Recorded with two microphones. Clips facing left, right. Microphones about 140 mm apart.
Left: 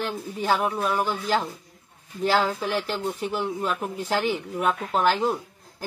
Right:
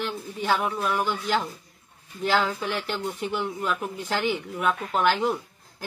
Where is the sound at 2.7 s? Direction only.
35° left (ahead or behind).